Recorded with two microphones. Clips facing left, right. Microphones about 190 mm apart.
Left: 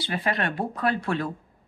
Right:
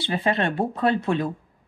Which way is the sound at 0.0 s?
25° right (ahead or behind).